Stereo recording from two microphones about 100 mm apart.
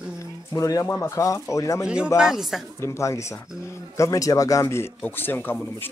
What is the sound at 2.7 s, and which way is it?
Speech, 30° left (ahead or behind).